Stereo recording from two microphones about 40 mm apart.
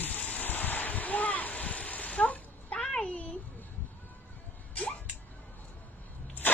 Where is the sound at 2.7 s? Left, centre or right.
Centre.